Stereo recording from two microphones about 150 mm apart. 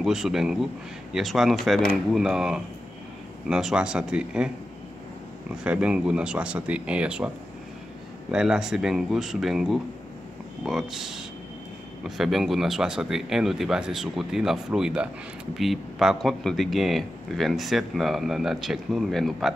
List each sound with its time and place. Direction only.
0.0 s speech: 5° right (ahead or behind)
5.6 s speech: 5° right (ahead or behind)
8.3 s speech: 5° right (ahead or behind)